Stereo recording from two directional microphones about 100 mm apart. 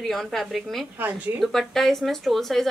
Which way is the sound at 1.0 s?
20° right (ahead or behind).